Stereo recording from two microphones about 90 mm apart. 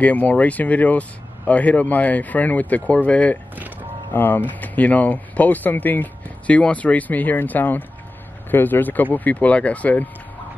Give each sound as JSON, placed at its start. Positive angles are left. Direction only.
{"t": 0.0, "sound": "speech", "side_deg": 15}